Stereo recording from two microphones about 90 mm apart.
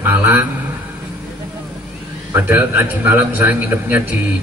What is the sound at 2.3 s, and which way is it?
A man's voice, 20° right (ahead or behind).